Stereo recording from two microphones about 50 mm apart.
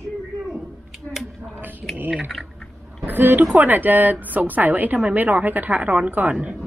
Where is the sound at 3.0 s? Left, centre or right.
Right.